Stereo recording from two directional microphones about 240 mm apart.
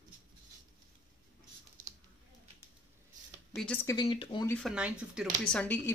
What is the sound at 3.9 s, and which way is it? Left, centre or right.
Speech, left.